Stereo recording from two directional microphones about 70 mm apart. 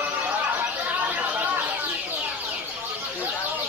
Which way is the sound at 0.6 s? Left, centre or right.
Right.